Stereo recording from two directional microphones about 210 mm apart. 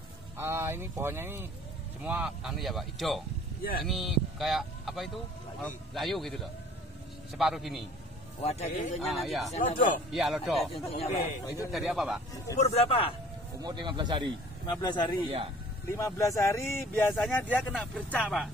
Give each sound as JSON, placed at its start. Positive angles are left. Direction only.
{"t": 0.4, "sound": "speech", "side_deg": -10}
{"t": 8.4, "sound": "speech", "side_deg": 30}
{"t": 9.0, "sound": "speech", "side_deg": 0}
{"t": 9.5, "sound": "speech", "side_deg": 35}
{"t": 10.1, "sound": "speech", "side_deg": 0}
{"t": 10.7, "sound": "speech", "side_deg": 30}
{"t": 11.7, "sound": "speech", "side_deg": 0}
{"t": 12.7, "sound": "speech", "side_deg": 25}
{"t": 13.6, "sound": "speech", "side_deg": -20}
{"t": 14.7, "sound": "speech", "side_deg": 20}